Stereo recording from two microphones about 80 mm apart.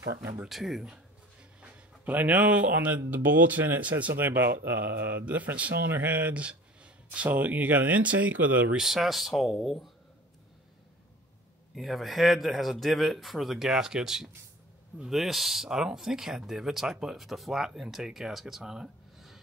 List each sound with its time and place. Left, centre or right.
0.0 s speech: right
0.5 s speech: centre
1.6 s speech: centre
8.7 s speech: centre
11.7 s speech: centre